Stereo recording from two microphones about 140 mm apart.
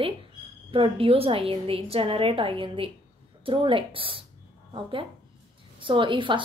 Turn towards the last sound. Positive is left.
turn(degrees=-35)  # may be behind; listen again after turning